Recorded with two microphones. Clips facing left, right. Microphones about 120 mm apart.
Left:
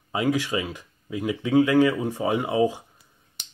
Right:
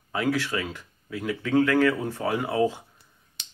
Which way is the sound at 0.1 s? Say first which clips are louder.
Left 2 dB; 20° left (ahead or behind).